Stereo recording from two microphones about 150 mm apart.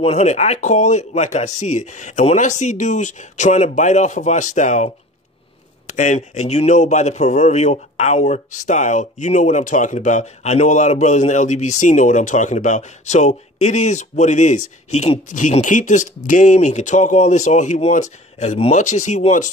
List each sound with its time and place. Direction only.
0.0 s a man's voice: 45° left (ahead or behind)
5.9 s a man's voice: 55° left (ahead or behind)